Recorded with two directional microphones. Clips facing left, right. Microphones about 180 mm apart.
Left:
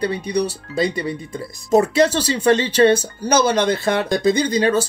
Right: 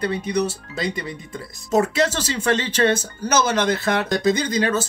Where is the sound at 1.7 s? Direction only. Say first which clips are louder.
Left 4 dB; 35° left (ahead or behind).